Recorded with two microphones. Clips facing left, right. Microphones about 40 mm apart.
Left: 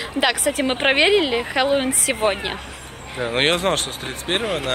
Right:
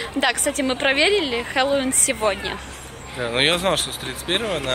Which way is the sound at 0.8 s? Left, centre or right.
Left.